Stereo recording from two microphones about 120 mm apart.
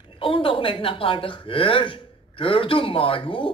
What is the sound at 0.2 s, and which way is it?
Speech, 50° left (ahead or behind).